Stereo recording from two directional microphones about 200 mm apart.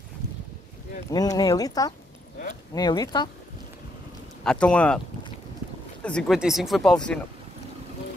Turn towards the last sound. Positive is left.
turn(degrees=5)  # may be behind; listen again after turning